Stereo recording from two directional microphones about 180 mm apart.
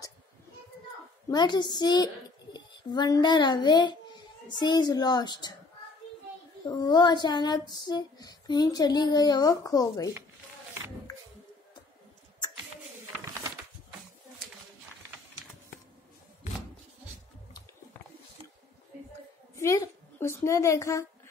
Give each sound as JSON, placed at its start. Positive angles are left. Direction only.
{"t": 1.3, "sound": "a child's voice", "side_deg": 25}
{"t": 6.8, "sound": "a child's voice", "side_deg": 25}
{"t": 19.5, "sound": "a sound", "side_deg": 15}